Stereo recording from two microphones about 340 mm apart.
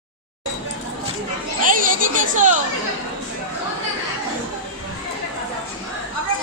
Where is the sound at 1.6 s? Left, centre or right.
Right.